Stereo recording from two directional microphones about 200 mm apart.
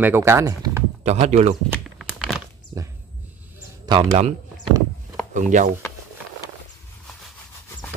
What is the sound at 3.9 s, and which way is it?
Speech, 25° right (ahead or behind).